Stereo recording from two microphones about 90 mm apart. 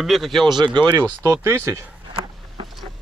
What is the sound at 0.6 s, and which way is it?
Speech, 60° right (ahead or behind).